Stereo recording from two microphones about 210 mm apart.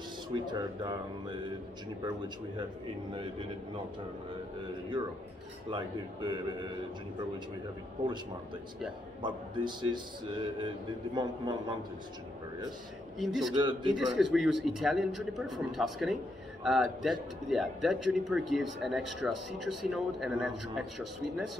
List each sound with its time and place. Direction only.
0.3 s a man's voice: 20° right (ahead or behind)
5.7 s a man's voice: 20° right (ahead or behind)
9.2 s a man's voice: 20° right (ahead or behind)
13.2 s a man's voice: centre (ahead or behind)
13.6 s a man's voice: 20° right (ahead or behind)
13.9 s a man's voice: centre (ahead or behind)